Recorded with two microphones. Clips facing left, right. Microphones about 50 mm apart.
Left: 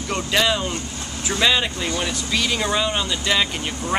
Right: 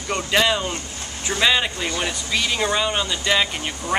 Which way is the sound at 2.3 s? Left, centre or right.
Centre.